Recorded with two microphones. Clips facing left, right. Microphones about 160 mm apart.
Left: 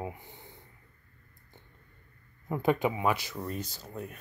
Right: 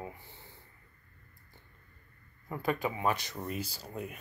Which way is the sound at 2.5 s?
20° left (ahead or behind).